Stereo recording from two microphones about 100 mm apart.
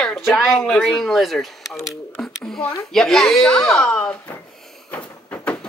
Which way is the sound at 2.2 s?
5° left (ahead or behind).